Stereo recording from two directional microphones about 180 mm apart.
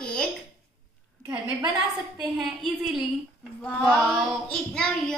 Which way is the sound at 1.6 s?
25° right (ahead or behind).